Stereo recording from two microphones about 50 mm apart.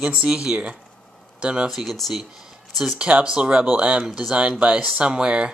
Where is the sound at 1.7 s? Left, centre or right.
Centre.